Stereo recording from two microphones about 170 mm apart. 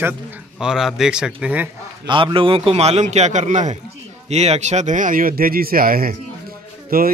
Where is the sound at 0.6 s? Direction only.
5° right (ahead or behind).